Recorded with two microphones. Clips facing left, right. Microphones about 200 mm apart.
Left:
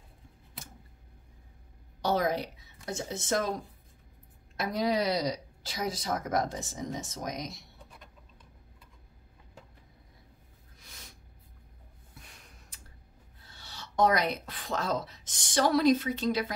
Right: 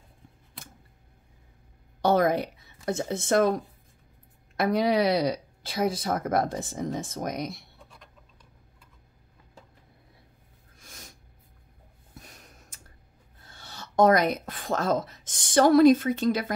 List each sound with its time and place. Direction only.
2.0 s speech: 55° right (ahead or behind)
10.8 s snort: 45° right (ahead or behind)
12.1 s snort: 40° right (ahead or behind)
13.4 s speech: 50° right (ahead or behind)